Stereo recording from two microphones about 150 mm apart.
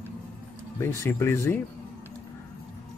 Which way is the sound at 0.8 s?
15° left (ahead or behind).